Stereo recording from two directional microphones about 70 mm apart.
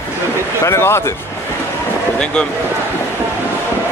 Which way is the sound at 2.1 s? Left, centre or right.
Centre.